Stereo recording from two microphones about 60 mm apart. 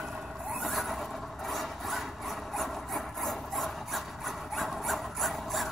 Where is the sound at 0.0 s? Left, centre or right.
Centre.